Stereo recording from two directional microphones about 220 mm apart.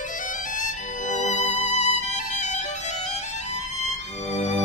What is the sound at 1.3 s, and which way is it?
Music, 90° right.